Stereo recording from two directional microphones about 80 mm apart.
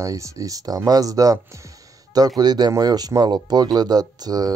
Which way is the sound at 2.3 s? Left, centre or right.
Right.